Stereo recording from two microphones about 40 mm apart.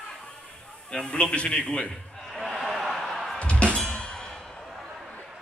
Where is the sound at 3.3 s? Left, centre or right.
Left.